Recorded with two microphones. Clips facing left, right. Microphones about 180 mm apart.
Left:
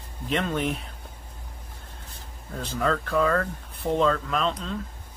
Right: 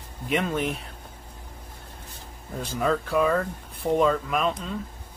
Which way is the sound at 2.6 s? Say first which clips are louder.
Right 1 dB; 10° right (ahead or behind).